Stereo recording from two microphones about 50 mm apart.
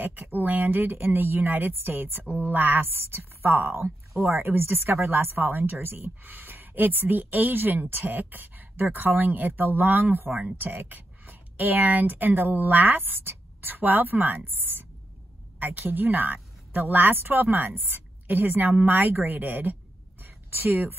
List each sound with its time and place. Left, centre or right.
0.0 s speech: right